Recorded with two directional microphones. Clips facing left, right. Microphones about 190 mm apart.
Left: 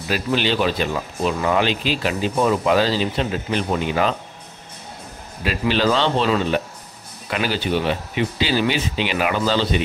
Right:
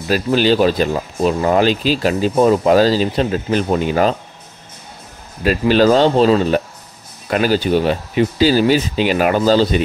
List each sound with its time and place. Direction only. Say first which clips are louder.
0.1 s speech: right 7 dB; 40° right (ahead or behind)
5.4 s speech: right 7 dB; 45° right (ahead or behind)